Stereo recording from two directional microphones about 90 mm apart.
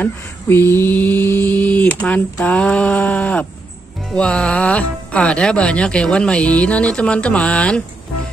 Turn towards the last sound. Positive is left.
turn(degrees=15)  # may be behind; listen again after turning